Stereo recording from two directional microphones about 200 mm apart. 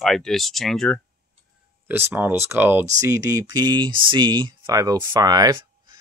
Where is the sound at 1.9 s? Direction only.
10° right (ahead or behind).